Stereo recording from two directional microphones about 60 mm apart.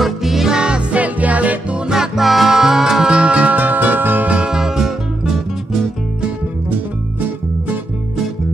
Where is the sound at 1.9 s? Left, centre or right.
Centre; by 4.3 s right.